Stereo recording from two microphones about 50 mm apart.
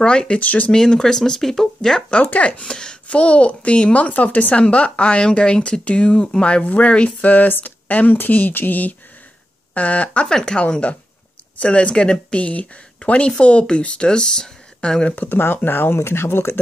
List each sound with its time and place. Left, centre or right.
0.0 s a woman's voice: centre
0.4 s speech: left
0.7 s speech: centre
2.2 s a woman's voice: left
2.6 s a woman's voice: centre
10.2 s speech: centre
10.6 s a woman's voice: left
15.1 s speech: left